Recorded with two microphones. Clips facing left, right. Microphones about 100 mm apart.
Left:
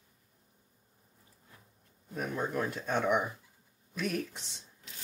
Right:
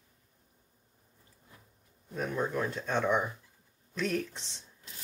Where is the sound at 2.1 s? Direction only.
5° left (ahead or behind).